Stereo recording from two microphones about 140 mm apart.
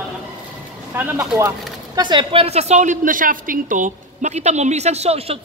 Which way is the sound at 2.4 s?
50° right (ahead or behind).